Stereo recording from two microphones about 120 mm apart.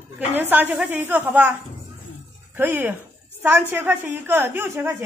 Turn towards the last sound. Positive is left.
turn(degrees=-20)  # may be behind; listen again after turning